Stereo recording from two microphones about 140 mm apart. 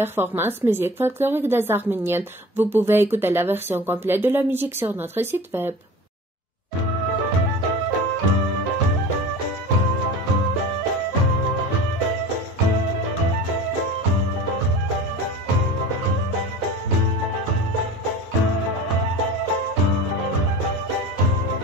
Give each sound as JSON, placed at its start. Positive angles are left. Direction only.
{"t": 0.0, "sound": "speech", "side_deg": -15}